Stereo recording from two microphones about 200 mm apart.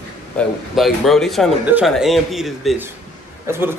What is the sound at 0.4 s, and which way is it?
A man's voice, centre (ahead or behind).